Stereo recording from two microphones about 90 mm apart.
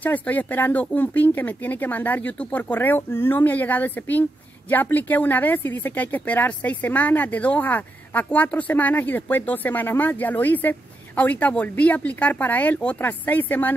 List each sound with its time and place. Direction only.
0.0 s speech: 20° left (ahead or behind)